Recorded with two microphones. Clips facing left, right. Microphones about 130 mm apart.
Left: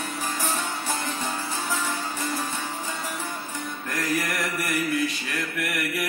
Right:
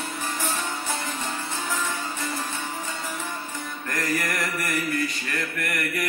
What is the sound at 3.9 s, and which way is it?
Mantra, centre (ahead or behind).